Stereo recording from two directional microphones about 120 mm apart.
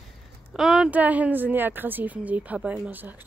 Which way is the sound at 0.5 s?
5° right (ahead or behind).